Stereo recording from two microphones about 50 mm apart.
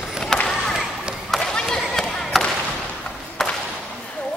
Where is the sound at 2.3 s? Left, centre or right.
Centre.